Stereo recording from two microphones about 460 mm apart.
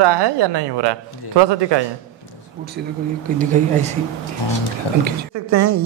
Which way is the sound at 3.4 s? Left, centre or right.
Centre.